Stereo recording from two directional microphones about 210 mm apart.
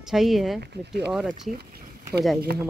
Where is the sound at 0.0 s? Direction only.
Centre (ahead or behind).